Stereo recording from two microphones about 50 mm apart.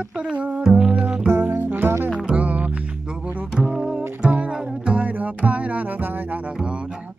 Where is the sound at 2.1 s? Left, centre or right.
Right.